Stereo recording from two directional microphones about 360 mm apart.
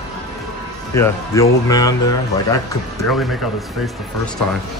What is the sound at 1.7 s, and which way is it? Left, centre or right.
Speech, centre.